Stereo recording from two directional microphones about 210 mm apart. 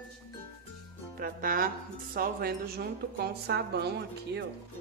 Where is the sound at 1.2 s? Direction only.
40° right (ahead or behind).